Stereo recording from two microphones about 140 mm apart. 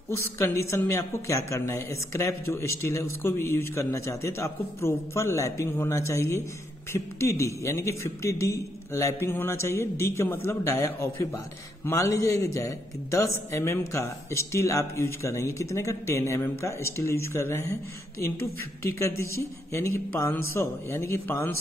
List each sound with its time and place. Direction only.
0.1 s a man's voice: 20° left (ahead or behind)
18.8 s a man's voice: 20° left (ahead or behind)